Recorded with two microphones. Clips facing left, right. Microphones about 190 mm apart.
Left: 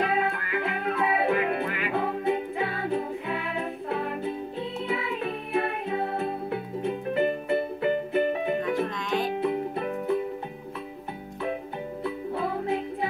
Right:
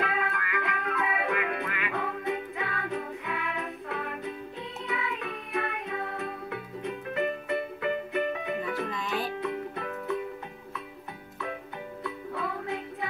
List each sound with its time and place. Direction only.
0.0 s music: 30° left (ahead or behind)
8.9 s music: centre (ahead or behind)
9.4 s music: 30° left (ahead or behind)
12.0 s music: 30° left (ahead or behind)